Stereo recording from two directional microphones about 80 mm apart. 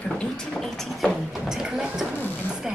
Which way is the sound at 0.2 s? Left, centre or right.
Centre.